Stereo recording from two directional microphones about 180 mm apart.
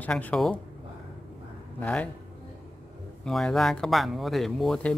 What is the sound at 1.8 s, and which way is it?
Speech, 5° left (ahead or behind).